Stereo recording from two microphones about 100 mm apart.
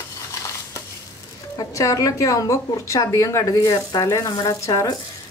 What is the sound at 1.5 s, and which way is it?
Speech, 35° left (ahead or behind).